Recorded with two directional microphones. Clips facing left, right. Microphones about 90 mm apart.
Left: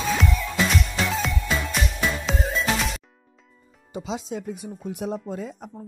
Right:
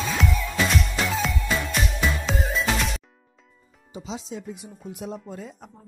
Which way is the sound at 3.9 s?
60° left (ahead or behind).